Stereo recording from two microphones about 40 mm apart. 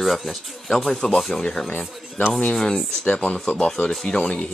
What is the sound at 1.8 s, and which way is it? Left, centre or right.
Speech, left.